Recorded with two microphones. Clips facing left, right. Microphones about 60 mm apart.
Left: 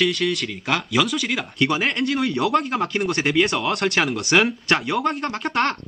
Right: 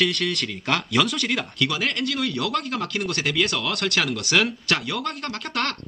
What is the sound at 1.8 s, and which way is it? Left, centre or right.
A man's voice, centre.